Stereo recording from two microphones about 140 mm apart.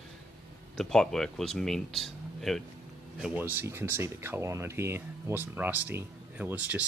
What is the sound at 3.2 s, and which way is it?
Speech, 10° right (ahead or behind).